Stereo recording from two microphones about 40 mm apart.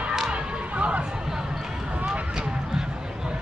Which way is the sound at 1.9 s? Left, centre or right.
Right.